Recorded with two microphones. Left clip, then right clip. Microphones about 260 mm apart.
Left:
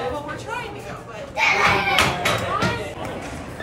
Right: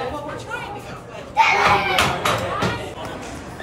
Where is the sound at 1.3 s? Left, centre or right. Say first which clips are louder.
Right 2 dB; centre.